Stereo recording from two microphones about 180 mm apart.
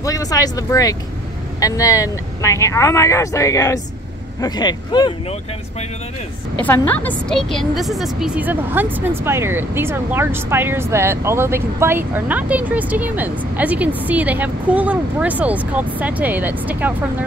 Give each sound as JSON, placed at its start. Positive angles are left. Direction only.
{"t": 0.0, "sound": "speech", "side_deg": 20}
{"t": 6.6, "sound": "a woman's voice", "side_deg": 10}